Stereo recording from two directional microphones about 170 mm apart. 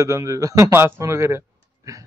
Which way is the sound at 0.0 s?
20° right (ahead or behind).